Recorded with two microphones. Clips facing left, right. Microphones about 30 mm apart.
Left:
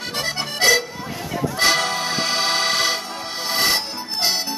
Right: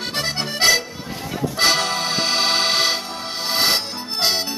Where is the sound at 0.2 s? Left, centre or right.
Centre.